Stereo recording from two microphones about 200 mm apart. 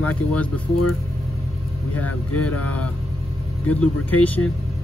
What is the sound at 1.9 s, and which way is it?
Speech, 10° left (ahead or behind).